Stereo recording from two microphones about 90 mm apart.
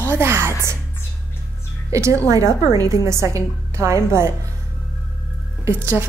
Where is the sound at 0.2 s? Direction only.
25° right (ahead or behind).